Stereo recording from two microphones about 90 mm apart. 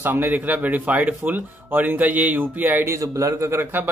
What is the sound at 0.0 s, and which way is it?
Speech, 20° right (ahead or behind).